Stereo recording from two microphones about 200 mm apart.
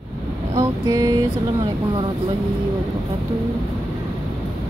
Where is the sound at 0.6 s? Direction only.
20° right (ahead or behind).